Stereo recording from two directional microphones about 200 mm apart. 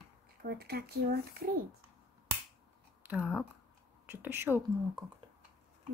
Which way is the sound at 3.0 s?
10° right (ahead or behind).